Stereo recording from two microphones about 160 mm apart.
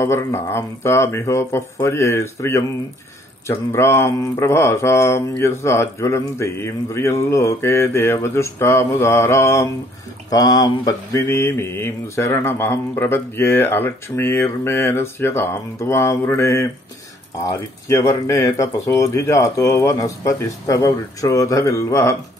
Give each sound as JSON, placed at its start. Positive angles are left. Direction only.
{"t": 0.0, "sound": "speech", "side_deg": 15}
{"t": 17.8, "sound": "speech", "side_deg": 20}